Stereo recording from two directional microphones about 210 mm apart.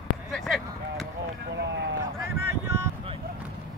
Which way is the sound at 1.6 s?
55° right (ahead or behind).